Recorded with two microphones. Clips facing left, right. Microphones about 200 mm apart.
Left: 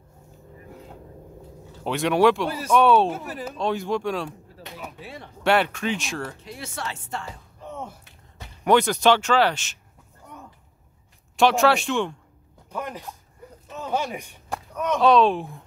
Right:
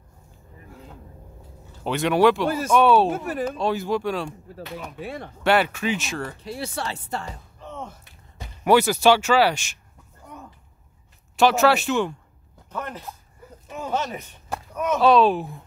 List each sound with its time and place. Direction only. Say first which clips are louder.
1.9 s speech: right 1 dB; centre (ahead or behind)
3.1 s speech: right 5 dB; 55° right (ahead or behind)
3.5 s speech: left 3 dB; 5° right (ahead or behind)
5.0 s speech: right 6 dB; 55° right (ahead or behind)
5.4 s speech: right 1 dB; centre (ahead or behind)
6.4 s speech: right 4 dB; 35° right (ahead or behind)
7.6 s a sound: left 1 dB; 10° left (ahead or behind)
8.6 s speech: right 1 dB; 5° right (ahead or behind)
11.3 s speech: right 1 dB; centre (ahead or behind)
12.6 s a sound: even; 10° left (ahead or behind)
13.7 s a sound: right 2 dB; 10° right (ahead or behind)
13.9 s speech: left 1 dB; 10° left (ahead or behind)
14.5 s speech: right 1 dB; 5° right (ahead or behind)